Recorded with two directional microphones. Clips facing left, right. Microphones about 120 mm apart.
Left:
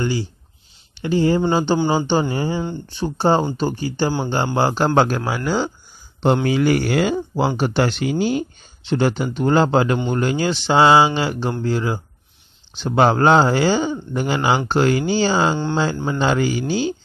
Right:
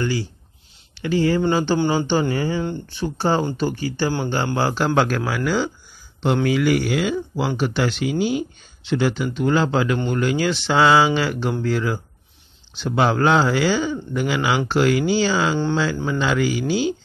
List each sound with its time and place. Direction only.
0.0 s speech: 25° left (ahead or behind)